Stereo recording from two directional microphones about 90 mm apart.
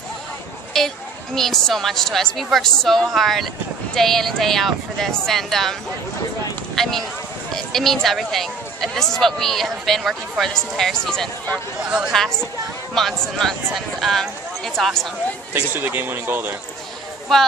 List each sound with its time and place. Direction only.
0.7 s a woman's voice: 5° left (ahead or behind)
15.5 s speech: 20° right (ahead or behind)